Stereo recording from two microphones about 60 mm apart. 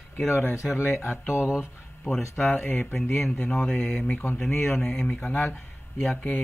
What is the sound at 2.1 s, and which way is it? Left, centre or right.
Speech, centre.